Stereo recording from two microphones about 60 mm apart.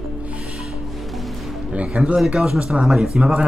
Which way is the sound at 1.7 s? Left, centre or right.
Right.